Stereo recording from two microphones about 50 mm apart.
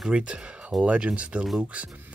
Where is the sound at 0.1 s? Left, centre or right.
Right.